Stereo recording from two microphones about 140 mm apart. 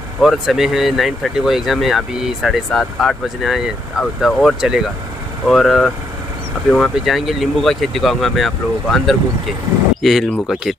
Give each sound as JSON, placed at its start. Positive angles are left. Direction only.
{"t": 0.2, "sound": "speech", "side_deg": 0}